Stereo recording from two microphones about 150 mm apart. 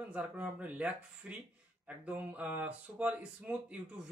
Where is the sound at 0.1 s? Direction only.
10° right (ahead or behind).